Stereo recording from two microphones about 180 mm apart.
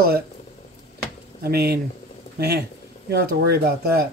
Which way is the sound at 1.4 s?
60° right (ahead or behind).